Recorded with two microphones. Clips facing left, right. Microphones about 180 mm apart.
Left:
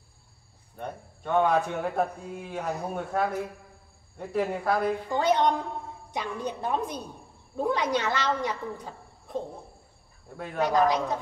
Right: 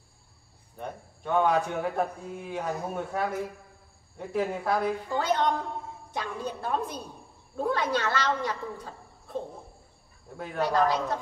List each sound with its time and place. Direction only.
0.7 s speech: centre (ahead or behind)
5.1 s a woman's voice: 15° left (ahead or behind)
10.3 s speech: 5° right (ahead or behind)
10.6 s a woman's voice: 15° left (ahead or behind)